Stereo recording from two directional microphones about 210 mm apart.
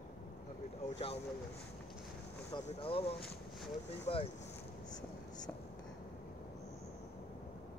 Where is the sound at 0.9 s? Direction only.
30° left (ahead or behind).